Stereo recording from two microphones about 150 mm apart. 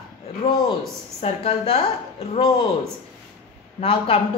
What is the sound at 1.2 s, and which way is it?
Speech, 40° left (ahead or behind).